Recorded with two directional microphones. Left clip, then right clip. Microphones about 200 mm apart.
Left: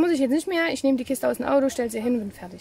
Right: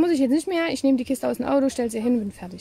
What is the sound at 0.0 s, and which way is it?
Speech, 10° right (ahead or behind).